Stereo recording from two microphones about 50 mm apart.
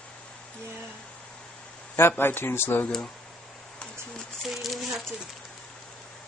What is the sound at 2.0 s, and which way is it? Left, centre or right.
Speech, left.